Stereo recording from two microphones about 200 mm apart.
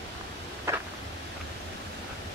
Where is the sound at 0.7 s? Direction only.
15° right (ahead or behind).